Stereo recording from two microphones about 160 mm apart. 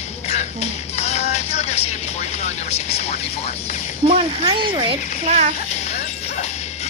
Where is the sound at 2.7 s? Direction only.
40° left (ahead or behind).